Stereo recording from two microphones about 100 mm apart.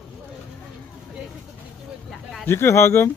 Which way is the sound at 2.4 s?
25° left (ahead or behind).